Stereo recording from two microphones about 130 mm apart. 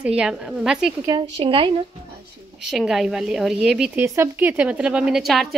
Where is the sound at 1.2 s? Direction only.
40° right (ahead or behind).